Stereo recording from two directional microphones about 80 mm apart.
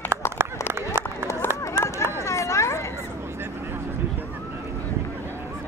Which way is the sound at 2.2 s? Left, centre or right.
Left.